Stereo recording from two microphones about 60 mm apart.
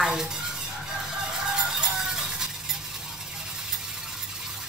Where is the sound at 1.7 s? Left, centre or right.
Centre.